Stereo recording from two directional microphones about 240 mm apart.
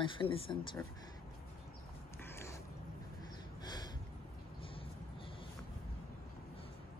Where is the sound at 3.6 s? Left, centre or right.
Centre.